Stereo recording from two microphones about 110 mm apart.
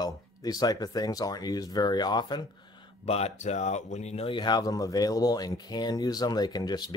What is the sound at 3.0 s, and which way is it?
Speech, 75° left (ahead or behind).